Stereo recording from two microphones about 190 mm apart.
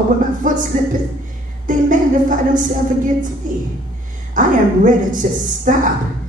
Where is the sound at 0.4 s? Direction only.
45° right (ahead or behind).